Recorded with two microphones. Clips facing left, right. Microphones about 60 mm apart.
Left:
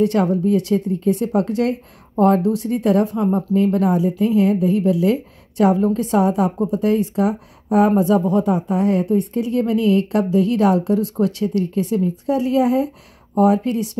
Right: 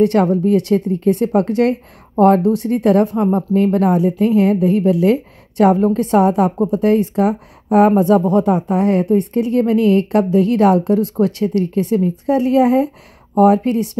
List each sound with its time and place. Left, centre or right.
0.0 s a woman's voice: right